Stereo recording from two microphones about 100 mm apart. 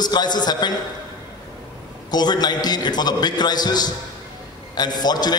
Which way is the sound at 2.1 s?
45° left (ahead or behind).